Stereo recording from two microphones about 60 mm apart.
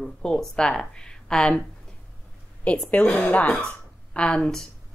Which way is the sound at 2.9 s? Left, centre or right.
Left.